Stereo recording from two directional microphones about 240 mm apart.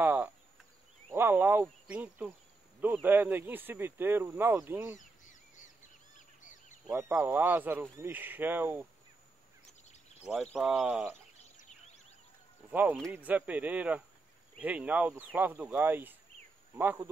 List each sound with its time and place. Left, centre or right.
0.0 s speech: centre
4.9 s crow: left
6.1 s a sound: left
6.9 s speech: centre
9.7 s a sound: left
10.2 s speech: centre
12.7 s speech: centre